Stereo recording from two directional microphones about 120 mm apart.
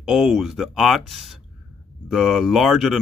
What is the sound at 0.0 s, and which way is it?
Speech, centre (ahead or behind).